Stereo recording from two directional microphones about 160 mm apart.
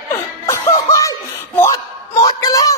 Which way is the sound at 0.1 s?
20° left (ahead or behind).